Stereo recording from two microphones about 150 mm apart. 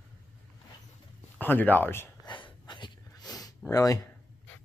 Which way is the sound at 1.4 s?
10° left (ahead or behind).